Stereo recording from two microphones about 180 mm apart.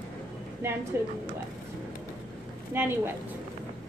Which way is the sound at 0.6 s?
15° right (ahead or behind).